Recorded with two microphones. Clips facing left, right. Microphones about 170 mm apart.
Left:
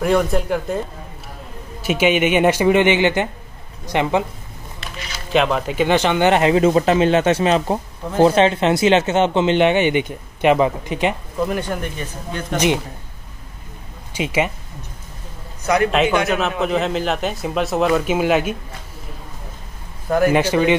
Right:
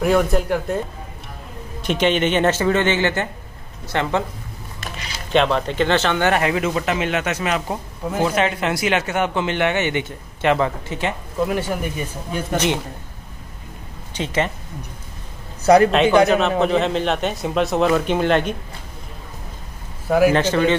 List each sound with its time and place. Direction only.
0.0 s a man's voice: centre (ahead or behind); by 4.2 s 15° left (ahead or behind)
5.3 s speech: 5° left (ahead or behind)
11.3 s speech: centre (ahead or behind)
12.5 s a man's voice: 10° left (ahead or behind)
14.1 s a man's voice: 10° left (ahead or behind)
15.6 s a man's voice: 35° right (ahead or behind)
16.3 s a man's voice: centre (ahead or behind)
20.1 s speech: 5° right (ahead or behind)
20.3 s a man's voice: 10° left (ahead or behind)